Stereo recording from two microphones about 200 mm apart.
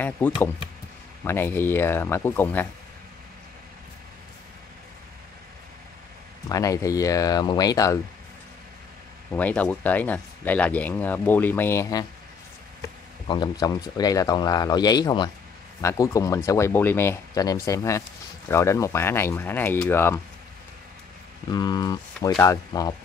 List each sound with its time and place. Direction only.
0.0 s speech: 10° left (ahead or behind)
6.5 s speech: 15° left (ahead or behind)
9.3 s speech: 10° left (ahead or behind)
13.3 s speech: 20° left (ahead or behind)
21.5 s speech: 20° left (ahead or behind)